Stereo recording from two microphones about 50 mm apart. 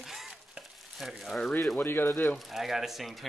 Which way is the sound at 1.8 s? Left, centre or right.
Left.